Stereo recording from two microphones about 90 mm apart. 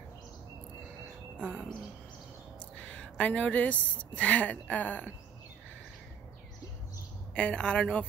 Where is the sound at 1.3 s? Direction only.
10° left (ahead or behind).